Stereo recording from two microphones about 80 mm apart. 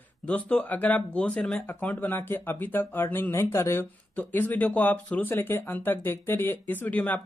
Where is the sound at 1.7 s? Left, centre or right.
Left.